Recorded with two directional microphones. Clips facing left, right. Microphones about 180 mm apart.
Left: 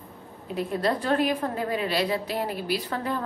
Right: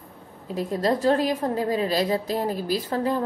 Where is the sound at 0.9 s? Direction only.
30° right (ahead or behind).